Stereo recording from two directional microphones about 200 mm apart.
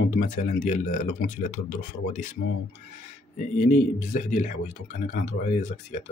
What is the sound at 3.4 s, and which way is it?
Speech, 40° left (ahead or behind).